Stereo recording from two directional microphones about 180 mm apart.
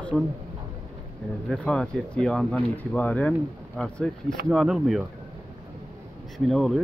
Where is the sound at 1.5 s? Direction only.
5° left (ahead or behind).